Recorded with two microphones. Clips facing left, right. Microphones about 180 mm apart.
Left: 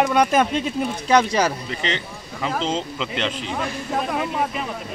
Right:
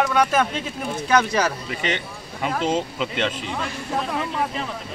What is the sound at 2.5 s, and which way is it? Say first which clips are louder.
Speech: right 2 dB; 5° right (ahead or behind).